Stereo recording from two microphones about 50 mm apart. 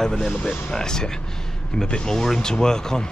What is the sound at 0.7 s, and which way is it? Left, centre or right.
Speech, centre.